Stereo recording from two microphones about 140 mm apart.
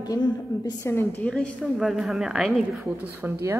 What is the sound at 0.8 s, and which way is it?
Speech, 15° left (ahead or behind).